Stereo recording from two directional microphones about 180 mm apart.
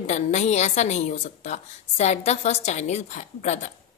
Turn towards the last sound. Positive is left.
turn(degrees=40)  # may be behind; listen again after turning